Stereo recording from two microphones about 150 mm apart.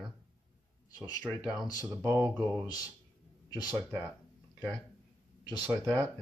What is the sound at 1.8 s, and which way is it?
Speech, 15° right (ahead or behind).